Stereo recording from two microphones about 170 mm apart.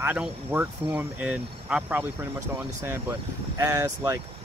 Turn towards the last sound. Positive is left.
turn(degrees=-15)  # may be behind; listen again after turning